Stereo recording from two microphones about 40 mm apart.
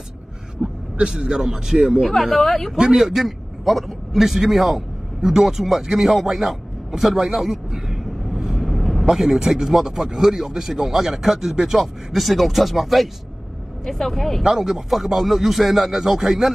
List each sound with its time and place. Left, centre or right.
0.6 s a man's voice: right
1.4 s speech: centre
2.0 s speech: centre
2.8 s a man's voice: centre
14.4 s speech: centre